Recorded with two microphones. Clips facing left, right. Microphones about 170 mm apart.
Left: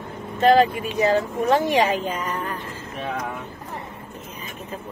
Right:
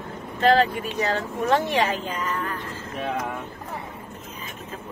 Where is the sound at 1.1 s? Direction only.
15° left (ahead or behind).